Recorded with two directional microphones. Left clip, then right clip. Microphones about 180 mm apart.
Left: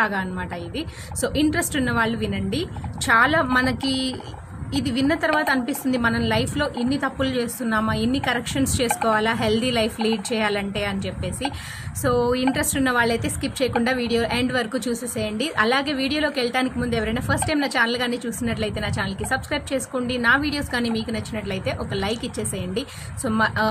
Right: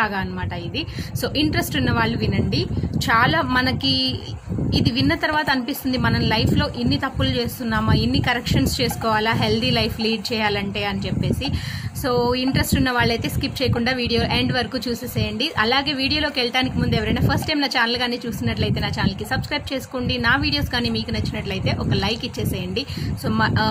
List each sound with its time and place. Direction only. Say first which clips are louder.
0.0 s a woman's voice: even; 5° left (ahead or behind)
12.0 s a woman's voice: even; 5° left (ahead or behind)